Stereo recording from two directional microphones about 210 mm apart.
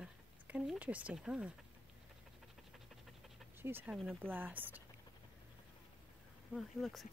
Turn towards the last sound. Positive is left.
turn(degrees=0)  # may be behind; listen again after turning